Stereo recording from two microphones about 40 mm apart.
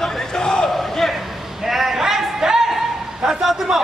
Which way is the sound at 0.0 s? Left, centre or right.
Centre.